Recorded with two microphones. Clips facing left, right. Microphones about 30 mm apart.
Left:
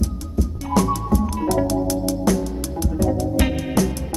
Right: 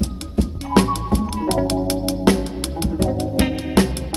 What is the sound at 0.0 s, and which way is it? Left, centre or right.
Music, right.